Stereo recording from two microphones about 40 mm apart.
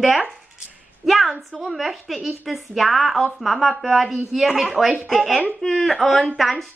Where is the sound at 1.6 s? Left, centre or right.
Centre.